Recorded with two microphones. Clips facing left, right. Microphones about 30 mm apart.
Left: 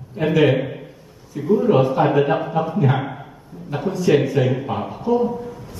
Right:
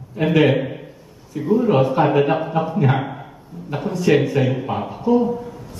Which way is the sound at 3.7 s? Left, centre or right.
Centre.